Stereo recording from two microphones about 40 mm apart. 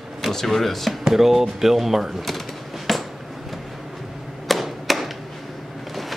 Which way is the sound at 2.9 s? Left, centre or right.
Centre.